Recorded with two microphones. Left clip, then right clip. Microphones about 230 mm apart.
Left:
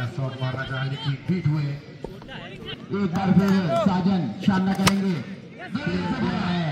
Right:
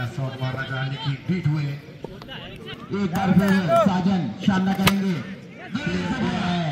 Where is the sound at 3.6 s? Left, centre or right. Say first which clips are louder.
Right 4 dB; right.